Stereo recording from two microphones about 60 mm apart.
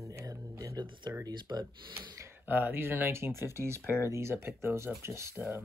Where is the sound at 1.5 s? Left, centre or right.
Right.